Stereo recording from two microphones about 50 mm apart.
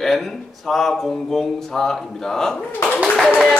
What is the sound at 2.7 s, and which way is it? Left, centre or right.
Speech, left.